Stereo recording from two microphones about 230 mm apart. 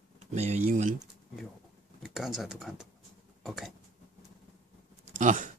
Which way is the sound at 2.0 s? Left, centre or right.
Centre.